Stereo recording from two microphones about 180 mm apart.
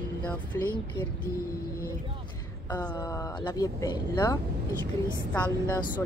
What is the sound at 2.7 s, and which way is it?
Speech, 20° left (ahead or behind).